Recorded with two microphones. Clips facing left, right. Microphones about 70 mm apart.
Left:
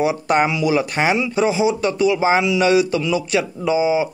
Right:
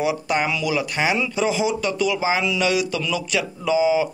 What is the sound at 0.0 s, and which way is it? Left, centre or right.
Speech, left.